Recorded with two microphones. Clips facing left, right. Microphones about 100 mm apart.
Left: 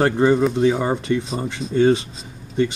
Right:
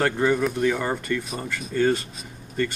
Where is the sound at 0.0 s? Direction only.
25° left (ahead or behind).